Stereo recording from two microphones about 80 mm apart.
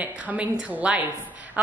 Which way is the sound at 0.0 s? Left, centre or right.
Centre.